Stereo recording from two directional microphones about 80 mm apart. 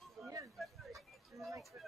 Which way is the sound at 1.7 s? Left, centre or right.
Centre.